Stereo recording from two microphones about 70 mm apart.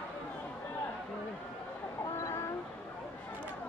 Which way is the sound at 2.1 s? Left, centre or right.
Left.